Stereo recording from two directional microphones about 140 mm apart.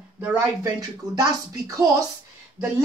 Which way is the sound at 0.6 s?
25° right (ahead or behind).